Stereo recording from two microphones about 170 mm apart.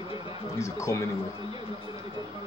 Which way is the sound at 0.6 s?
15° left (ahead or behind).